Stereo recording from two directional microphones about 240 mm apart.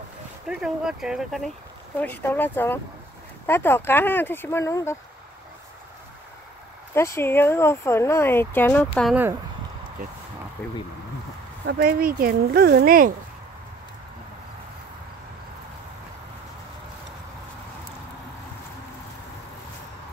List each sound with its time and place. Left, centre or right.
0.5 s speech: centre
6.9 s speech: centre
9.1 s speech: centre
11.6 s speech: right